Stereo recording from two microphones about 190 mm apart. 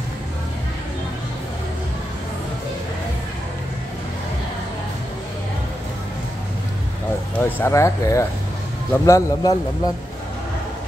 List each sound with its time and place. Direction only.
7.3 s speech: 10° left (ahead or behind)